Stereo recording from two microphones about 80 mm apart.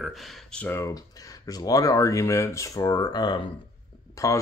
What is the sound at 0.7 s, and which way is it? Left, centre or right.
Speech, left.